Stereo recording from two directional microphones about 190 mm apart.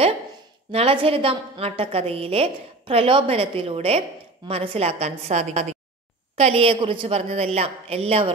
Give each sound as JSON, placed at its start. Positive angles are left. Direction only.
{"t": 0.7, "sound": "a woman's voice", "side_deg": -30}